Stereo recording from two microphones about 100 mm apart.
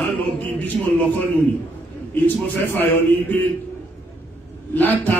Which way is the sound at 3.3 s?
15° left (ahead or behind).